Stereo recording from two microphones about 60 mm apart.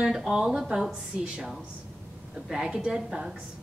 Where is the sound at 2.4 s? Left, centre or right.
Centre.